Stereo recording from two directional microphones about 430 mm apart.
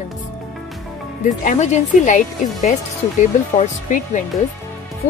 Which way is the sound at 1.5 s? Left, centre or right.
Centre.